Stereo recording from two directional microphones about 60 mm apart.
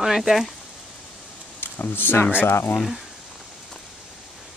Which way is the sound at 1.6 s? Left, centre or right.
Left.